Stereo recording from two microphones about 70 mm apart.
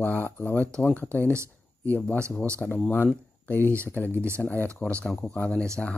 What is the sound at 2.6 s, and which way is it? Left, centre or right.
Speech, centre.